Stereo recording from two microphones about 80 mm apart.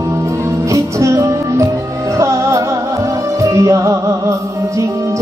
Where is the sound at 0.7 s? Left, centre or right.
Right.